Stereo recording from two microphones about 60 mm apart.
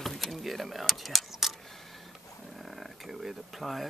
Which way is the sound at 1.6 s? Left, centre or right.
Centre.